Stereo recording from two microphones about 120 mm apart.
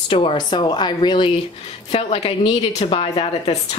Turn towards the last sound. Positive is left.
turn(degrees=55)  # may be behind; listen again after turning